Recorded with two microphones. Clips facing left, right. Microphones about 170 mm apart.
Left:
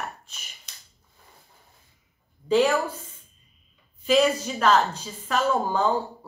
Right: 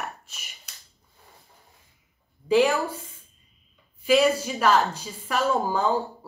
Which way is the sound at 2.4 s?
10° right (ahead or behind).